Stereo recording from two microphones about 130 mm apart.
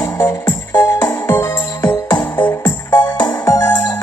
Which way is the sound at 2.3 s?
15° left (ahead or behind).